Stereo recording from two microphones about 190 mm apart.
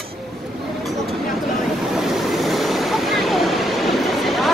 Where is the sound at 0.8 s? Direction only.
Centre (ahead or behind).